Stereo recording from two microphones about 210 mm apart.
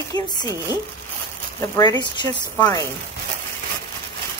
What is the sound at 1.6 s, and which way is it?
Speech, 20° left (ahead or behind).